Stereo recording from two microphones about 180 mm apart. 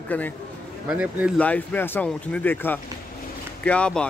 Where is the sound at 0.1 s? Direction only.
10° left (ahead or behind).